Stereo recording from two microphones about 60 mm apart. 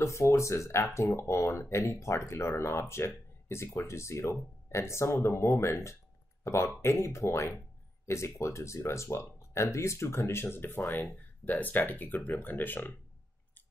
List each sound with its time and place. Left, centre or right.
0.0 s speech: left